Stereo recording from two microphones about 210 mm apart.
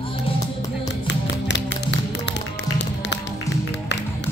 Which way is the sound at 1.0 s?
55° left (ahead or behind).